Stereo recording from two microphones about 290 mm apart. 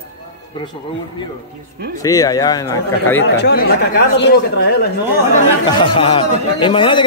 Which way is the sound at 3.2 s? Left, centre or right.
Left.